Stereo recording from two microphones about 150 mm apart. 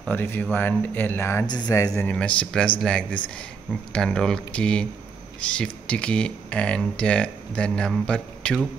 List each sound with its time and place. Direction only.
0.0 s speech: 15° left (ahead or behind)
1.5 s speech: 25° left (ahead or behind)
2.0 s speech: 10° left (ahead or behind)